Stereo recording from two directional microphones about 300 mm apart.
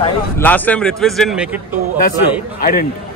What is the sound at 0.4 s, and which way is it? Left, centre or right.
Speech, centre.